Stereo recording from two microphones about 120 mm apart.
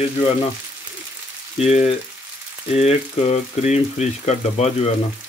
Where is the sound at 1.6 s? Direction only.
65° left (ahead or behind).